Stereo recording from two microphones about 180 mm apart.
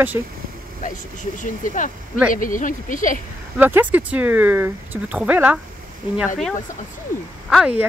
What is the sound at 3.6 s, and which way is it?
Speech, 10° right (ahead or behind).